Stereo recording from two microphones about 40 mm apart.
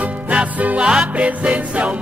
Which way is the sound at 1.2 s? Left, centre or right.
Right.